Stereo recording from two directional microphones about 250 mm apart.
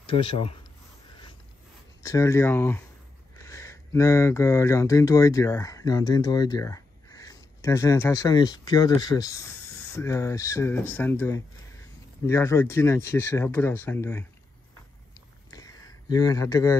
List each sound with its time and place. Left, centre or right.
0.0 s speech: left
2.0 s speech: centre
15.5 s a sound: centre